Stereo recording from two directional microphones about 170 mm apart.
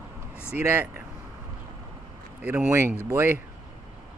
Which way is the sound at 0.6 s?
10° right (ahead or behind).